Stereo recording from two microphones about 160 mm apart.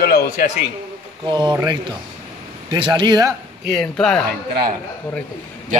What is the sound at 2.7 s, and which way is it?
Speech, 30° right (ahead or behind).